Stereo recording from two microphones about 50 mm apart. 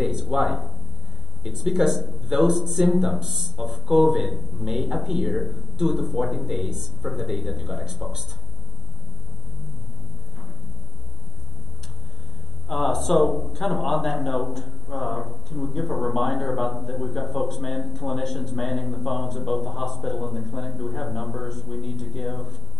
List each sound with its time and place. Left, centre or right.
0.0 s a man's voice: centre
12.6 s a man's voice: centre